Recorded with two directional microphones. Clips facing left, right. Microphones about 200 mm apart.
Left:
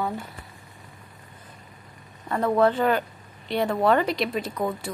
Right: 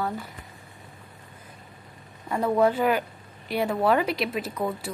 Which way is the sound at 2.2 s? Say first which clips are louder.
Left 1 dB; 10° right (ahead or behind).